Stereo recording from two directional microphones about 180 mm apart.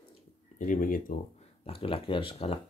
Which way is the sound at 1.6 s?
30° left (ahead or behind).